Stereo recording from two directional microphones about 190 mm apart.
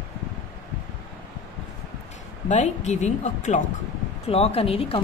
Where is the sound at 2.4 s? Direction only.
40° left (ahead or behind).